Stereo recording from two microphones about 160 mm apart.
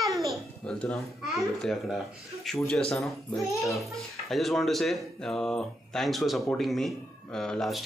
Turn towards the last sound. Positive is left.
turn(degrees=0)  # may be behind; listen again after turning